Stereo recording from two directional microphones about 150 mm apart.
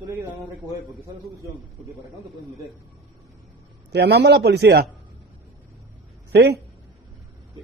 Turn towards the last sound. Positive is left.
turn(degrees=-90)